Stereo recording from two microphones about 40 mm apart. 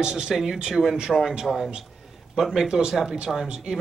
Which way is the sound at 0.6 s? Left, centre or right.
Centre.